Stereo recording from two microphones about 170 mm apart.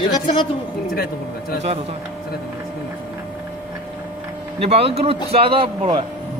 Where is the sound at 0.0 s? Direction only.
30° left (ahead or behind).